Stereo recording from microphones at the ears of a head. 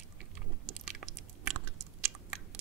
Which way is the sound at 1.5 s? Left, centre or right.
Right.